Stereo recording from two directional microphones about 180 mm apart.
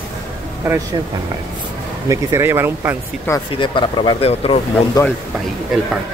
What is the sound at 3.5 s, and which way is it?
Speech, 25° left (ahead or behind).